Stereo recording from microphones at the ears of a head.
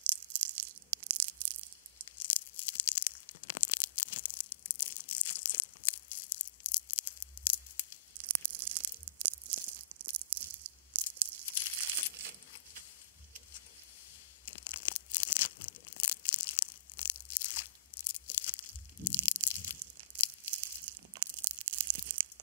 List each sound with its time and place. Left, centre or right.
0.0 s a sound: right
2.0 s tearing: left
8.2 s tearing: right
14.4 s tearing: left
20.5 s tearing: right